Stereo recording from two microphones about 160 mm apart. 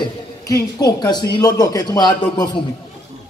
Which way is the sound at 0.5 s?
25° left (ahead or behind).